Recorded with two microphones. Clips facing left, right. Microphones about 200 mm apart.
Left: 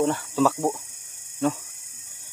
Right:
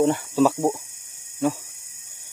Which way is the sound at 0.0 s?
15° right (ahead or behind).